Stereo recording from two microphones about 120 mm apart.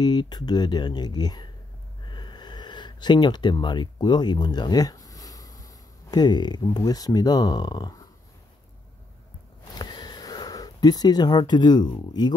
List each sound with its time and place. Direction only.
0.0 s speech: 35° left (ahead or behind)
2.0 s a sound: 40° left (ahead or behind)
6.7 s speech: 30° left (ahead or behind)
9.8 s speech: 35° left (ahead or behind)